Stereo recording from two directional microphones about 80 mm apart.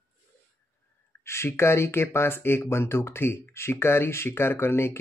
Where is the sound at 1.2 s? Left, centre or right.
Left.